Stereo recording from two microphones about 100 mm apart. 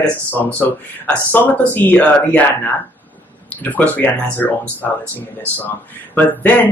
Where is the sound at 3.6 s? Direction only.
15° left (ahead or behind).